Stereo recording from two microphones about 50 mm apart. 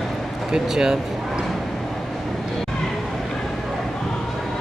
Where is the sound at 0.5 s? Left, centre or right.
Centre.